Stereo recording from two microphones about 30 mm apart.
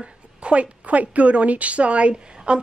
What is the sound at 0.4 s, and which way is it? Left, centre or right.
A woman's voice, right.